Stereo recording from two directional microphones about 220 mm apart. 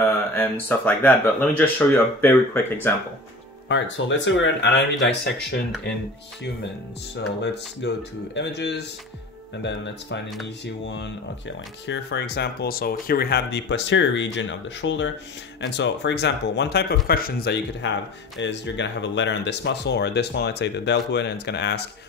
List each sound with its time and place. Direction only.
0.0 s speech: 10° left (ahead or behind)
3.6 s speech: 55° left (ahead or behind)
7.8 s speech: 50° left (ahead or behind)
11.9 s speech: 50° left (ahead or behind)